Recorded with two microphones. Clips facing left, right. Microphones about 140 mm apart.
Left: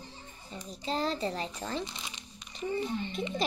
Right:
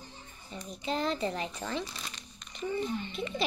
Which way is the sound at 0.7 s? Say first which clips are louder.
Even; 35° left (ahead or behind).